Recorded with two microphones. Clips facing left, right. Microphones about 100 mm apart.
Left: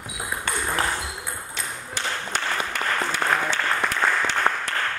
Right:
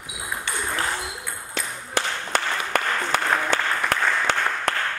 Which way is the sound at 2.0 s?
60° right (ahead or behind).